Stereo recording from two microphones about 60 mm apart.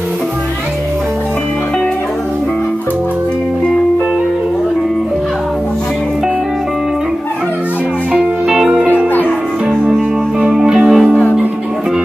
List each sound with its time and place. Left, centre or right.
8.2 s music: centre
8.8 s music: left
9.7 s music: centre